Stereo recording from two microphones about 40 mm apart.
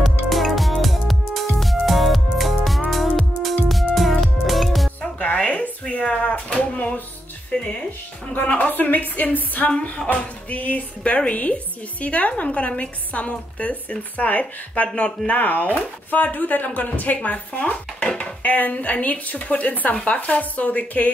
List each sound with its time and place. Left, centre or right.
0.0 s music: centre
5.2 s a sound: left
7.5 s music: left
8.5 s a woman's voice: left
9.7 s music: left
10.0 s speech: left
15.0 s music: left
15.3 s speech: left
18.4 s speech: left